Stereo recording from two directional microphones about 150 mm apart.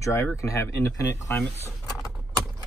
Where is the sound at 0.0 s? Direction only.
15° left (ahead or behind).